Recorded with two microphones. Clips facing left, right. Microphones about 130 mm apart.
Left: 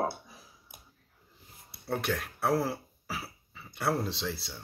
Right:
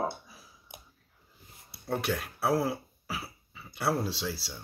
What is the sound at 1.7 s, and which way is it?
Speech, centre (ahead or behind).